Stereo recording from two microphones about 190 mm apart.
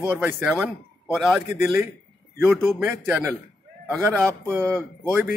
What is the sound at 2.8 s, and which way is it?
Speech, centre (ahead or behind).